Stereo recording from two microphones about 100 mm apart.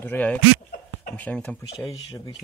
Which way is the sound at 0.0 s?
15° left (ahead or behind).